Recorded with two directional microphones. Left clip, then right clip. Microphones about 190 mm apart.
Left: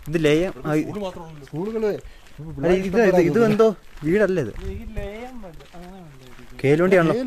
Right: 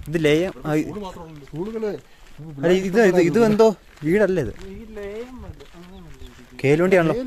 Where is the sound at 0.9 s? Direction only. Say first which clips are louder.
Left 3 dB; 70° left (ahead or behind).